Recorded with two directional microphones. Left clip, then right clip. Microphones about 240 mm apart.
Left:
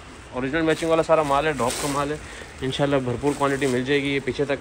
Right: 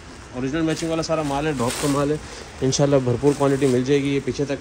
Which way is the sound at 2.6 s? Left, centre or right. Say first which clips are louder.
Right 4 dB; right.